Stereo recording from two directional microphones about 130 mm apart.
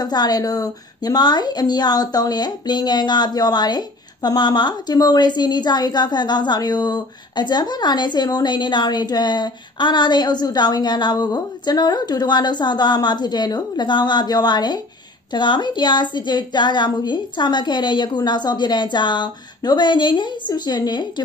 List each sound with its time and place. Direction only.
0.0 s speech: 30° left (ahead or behind)